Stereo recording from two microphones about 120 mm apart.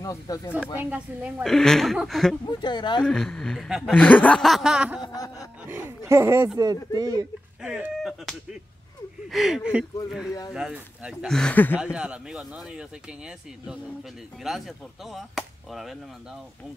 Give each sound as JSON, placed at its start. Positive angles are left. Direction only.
{"t": 0.0, "sound": "speech", "side_deg": 30}
{"t": 0.7, "sound": "speech", "side_deg": -10}
{"t": 1.4, "sound": "speech", "side_deg": 5}
{"t": 2.4, "sound": "speech", "side_deg": 40}
{"t": 3.0, "sound": "speech", "side_deg": 5}
{"t": 3.9, "sound": "speech", "side_deg": 10}
{"t": 4.5, "sound": "speech", "side_deg": -5}
{"t": 5.0, "sound": "snicker", "side_deg": 30}
{"t": 5.7, "sound": "speech", "side_deg": -20}
{"t": 7.6, "sound": "chicken", "side_deg": -10}
{"t": 9.3, "sound": "speech", "side_deg": -5}
{"t": 11.2, "sound": "speech", "side_deg": 5}
{"t": 11.5, "sound": "speech", "side_deg": 15}
{"t": 11.8, "sound": "speech", "side_deg": -10}